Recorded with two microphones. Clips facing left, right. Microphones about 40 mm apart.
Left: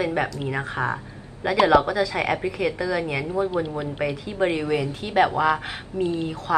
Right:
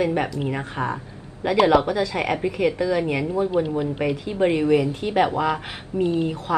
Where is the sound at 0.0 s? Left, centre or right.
Centre.